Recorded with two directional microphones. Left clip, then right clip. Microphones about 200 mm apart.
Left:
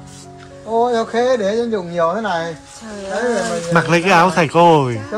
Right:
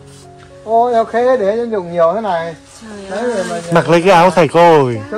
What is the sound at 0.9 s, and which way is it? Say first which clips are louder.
Speech: right 4 dB; 25° right (ahead or behind).